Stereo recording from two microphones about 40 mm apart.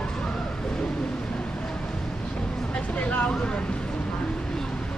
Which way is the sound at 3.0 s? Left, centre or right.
Left.